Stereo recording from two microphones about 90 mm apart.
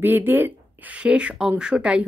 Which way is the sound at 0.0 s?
20° right (ahead or behind).